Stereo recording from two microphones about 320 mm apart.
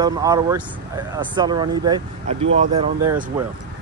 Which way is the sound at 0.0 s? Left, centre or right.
Centre.